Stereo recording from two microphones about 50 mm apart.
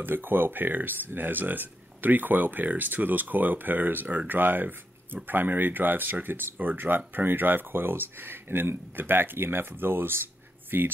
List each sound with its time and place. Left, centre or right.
0.0 s speech: right